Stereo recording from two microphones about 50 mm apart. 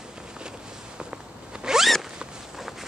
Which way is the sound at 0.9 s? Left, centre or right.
Centre.